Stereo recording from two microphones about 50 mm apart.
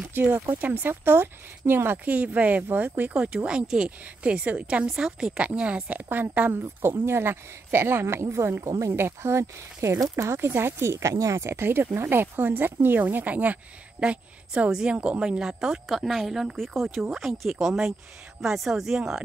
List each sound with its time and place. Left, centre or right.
0.1 s a woman's voice: right
2.0 s speech: right
4.8 s a woman's voice: centre; by 6.6 s right
6.6 s speech: right
8.9 s speech: right
11.6 s speech: right
13.9 s a woman's voice: right
16.1 s speech: centre
16.5 s a woman's voice: centre